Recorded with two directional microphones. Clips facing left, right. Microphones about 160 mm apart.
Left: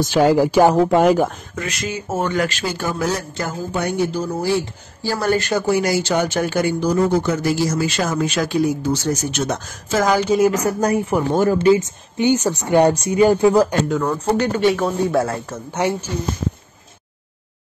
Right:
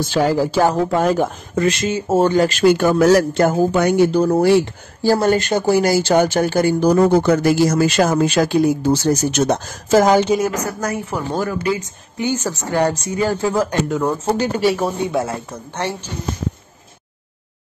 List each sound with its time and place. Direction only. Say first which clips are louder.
0.0 s speech: left 2 dB; 15° left (ahead or behind)
1.5 s speech: right 8 dB; 30° right (ahead or behind)
2.6 s a man's voice: right 10 dB; 65° right (ahead or behind)
5.2 s speech: right 3 dB; 25° right (ahead or behind)
6.0 s speech: right 4 dB; 45° right (ahead or behind)
6.8 s speech: right 5 dB; 65° right (ahead or behind)
8.0 s speech: right 6 dB; 45° right (ahead or behind); by 10.3 s 25° right (ahead or behind)
10.5 s speech: left 4 dB; 30° left (ahead or behind)
13.8 s speech: even; 5° right (ahead or behind)
15.0 s speech: left 2 dB; 20° right (ahead or behind)
15.5 s speech: left 4 dB; 10° left (ahead or behind)